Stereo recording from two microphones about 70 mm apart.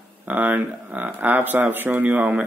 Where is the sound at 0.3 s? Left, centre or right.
Right.